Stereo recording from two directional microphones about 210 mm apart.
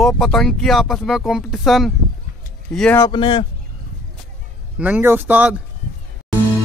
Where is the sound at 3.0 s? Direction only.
20° left (ahead or behind).